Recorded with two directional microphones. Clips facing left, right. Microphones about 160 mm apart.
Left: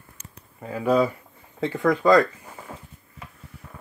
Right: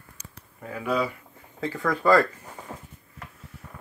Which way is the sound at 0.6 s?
30° left (ahead or behind).